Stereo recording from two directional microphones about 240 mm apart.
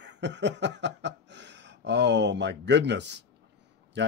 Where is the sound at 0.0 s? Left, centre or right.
Right.